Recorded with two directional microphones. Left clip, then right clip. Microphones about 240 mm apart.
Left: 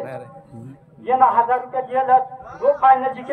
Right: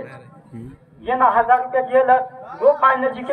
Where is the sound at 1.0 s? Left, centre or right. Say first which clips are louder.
Left 1 dB; centre.